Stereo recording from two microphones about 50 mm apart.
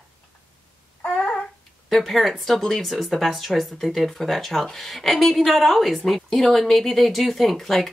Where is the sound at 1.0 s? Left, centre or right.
Left.